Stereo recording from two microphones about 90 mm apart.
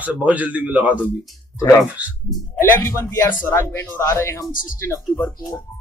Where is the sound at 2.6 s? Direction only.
30° left (ahead or behind).